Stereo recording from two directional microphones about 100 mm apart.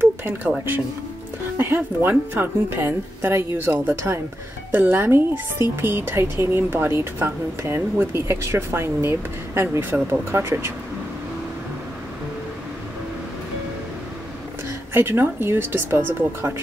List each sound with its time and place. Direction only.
0.0 s music: 20° right (ahead or behind)
2.0 s speech: 25° right (ahead or behind)
15.0 s speech: 25° right (ahead or behind)